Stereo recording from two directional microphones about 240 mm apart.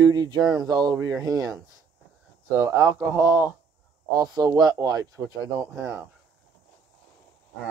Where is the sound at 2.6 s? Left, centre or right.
Centre.